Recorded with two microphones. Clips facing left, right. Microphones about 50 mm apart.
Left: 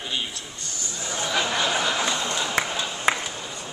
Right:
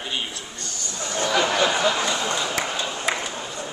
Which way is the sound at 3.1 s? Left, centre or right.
Left.